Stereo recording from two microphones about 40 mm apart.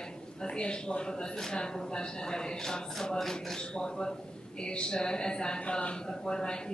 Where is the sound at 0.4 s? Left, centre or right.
Left.